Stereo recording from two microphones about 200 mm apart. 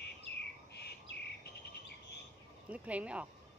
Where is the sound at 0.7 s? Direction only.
55° left (ahead or behind).